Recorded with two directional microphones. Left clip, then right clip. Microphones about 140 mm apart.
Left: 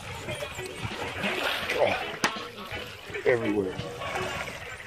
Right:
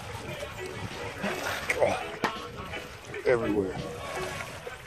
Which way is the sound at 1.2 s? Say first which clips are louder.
Left 4 dB; 60° right (ahead or behind).